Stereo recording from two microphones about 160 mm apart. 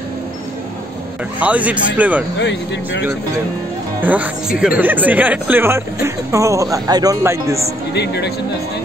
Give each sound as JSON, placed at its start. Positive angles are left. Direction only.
{"t": 1.4, "sound": "speech", "side_deg": -10}
{"t": 4.0, "sound": "speech", "side_deg": -10}
{"t": 7.9, "sound": "speech", "side_deg": 90}